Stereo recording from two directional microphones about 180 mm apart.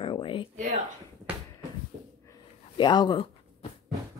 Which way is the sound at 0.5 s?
45° right (ahead or behind).